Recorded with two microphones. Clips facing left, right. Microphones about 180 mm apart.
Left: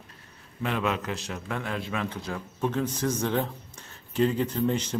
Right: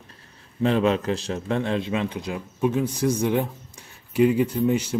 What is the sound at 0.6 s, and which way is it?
A man's voice, 30° right (ahead or behind).